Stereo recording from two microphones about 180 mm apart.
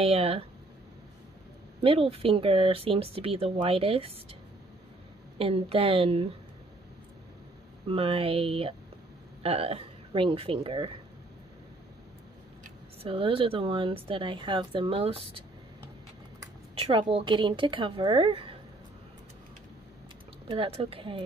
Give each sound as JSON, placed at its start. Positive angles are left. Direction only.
{"t": 0.0, "sound": "speech", "side_deg": -35}
{"t": 1.8, "sound": "speech", "side_deg": -30}
{"t": 5.4, "sound": "speech", "side_deg": -30}
{"t": 7.9, "sound": "speech", "side_deg": -30}
{"t": 13.0, "sound": "a woman's voice", "side_deg": -30}
{"t": 16.7, "sound": "a woman's voice", "side_deg": -30}
{"t": 20.4, "sound": "a woman's voice", "side_deg": -30}